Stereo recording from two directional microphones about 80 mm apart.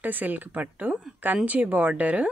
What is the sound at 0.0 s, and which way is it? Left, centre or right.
Speech, right.